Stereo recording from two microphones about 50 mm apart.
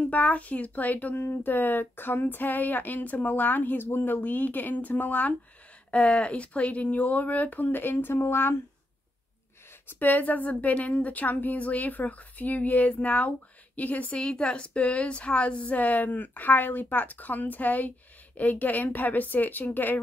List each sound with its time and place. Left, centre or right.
0.0 s a woman's voice: left
1.1 s a woman's voice: left
9.8 s a woman's voice: left
14.1 s a woman's voice: centre; by 20.0 s left